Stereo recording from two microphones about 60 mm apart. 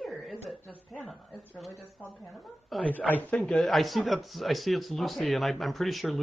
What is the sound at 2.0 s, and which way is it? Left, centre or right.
Speech, centre.